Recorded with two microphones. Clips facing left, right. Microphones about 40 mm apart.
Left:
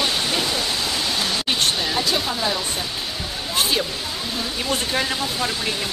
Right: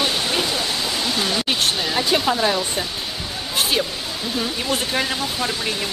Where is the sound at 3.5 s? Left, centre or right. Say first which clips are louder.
Right 1 dB; centre.